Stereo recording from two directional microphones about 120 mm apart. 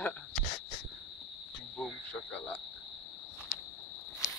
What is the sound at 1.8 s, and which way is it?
Cricket, 5° left (ahead or behind).